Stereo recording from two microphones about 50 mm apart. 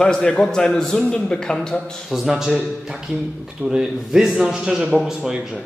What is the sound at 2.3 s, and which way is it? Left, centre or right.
Speech, centre.